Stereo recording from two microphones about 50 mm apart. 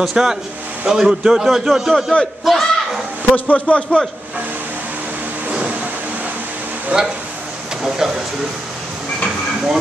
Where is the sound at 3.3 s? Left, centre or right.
Left.